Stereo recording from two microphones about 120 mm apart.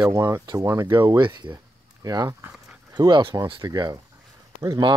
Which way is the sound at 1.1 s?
40° right (ahead or behind).